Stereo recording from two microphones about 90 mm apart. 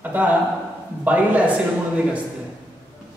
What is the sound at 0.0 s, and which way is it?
A man's voice, 15° right (ahead or behind).